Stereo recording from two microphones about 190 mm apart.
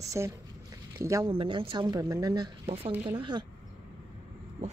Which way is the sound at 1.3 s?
25° right (ahead or behind).